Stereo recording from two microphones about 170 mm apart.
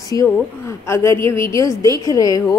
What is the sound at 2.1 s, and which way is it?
Speech, 20° left (ahead or behind).